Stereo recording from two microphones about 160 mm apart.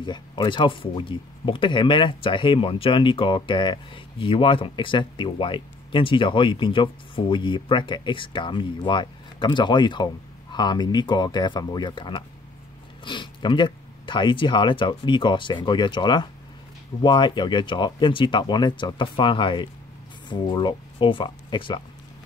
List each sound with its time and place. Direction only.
0.0 s speech: 30° left (ahead or behind)